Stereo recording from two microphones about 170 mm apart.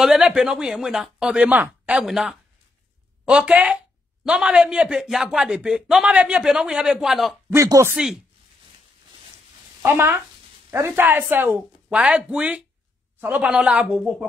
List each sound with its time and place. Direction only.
0.0 s speech: 5° right (ahead or behind)
7.4 s speech: 20° right (ahead or behind)
7.9 s speech: 5° right (ahead or behind)
9.8 s speech: 15° right (ahead or behind)